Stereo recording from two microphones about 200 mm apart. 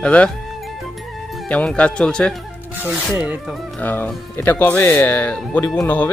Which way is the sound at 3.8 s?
10° left (ahead or behind).